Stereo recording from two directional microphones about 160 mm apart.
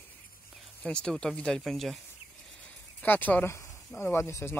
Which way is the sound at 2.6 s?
10° left (ahead or behind).